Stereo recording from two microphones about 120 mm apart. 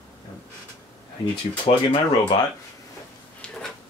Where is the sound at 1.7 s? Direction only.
70° left (ahead or behind).